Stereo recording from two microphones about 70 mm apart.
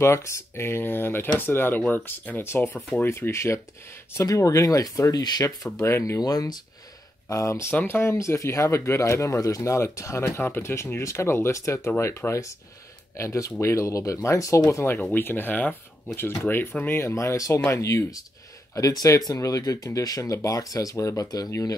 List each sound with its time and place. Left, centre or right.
0.0 s speech: left
3.1 s speech: left
5.7 s speech: left
6.1 s speech: left
7.2 s speech: left
7.7 s speech: left
15.0 s speech: left
17.0 s speech: left
21.3 s speech: left